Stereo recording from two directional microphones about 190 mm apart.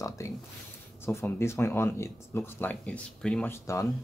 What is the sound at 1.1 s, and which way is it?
Speech, 10° left (ahead or behind).